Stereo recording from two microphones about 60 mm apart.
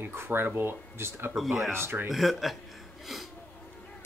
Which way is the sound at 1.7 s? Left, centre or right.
Right.